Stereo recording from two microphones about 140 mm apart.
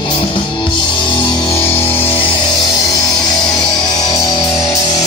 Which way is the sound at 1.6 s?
15° left (ahead or behind).